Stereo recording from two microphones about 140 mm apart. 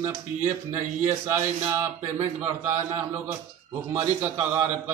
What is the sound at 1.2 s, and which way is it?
A man's voice, 20° right (ahead or behind).